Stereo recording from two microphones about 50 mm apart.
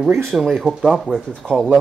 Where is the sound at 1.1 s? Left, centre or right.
Left.